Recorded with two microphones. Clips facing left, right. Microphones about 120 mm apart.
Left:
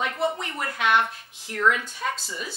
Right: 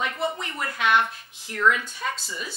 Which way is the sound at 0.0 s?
45° left (ahead or behind).